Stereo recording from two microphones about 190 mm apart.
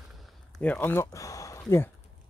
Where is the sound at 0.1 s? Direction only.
Centre (ahead or behind).